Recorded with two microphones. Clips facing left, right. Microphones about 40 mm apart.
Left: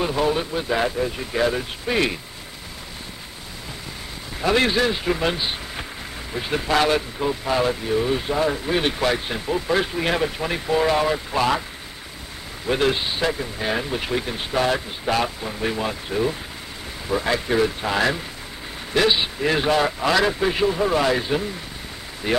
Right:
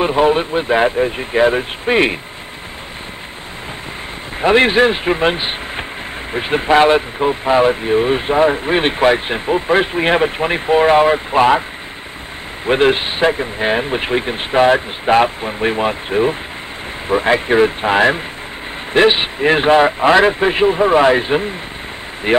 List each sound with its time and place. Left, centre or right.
0.0 s speech: right
4.4 s speech: right
12.6 s speech: right